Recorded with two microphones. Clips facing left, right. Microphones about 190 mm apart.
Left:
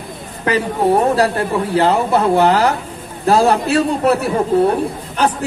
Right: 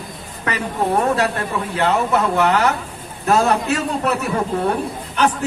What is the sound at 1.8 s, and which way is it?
A woman's voice, 35° left (ahead or behind).